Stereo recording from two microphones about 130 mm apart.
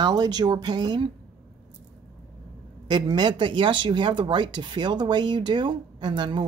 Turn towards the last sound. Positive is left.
turn(degrees=-35)  # may be behind; listen again after turning